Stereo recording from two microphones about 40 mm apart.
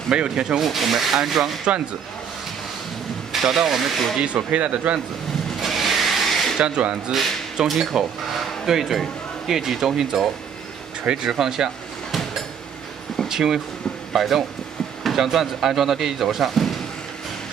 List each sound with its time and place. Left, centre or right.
0.1 s speech: right
0.6 s speech: centre
3.4 s speech: centre
4.3 s speech: right
5.6 s a sound: centre
6.6 s speech: right
7.6 s speech: centre
13.3 s speech: centre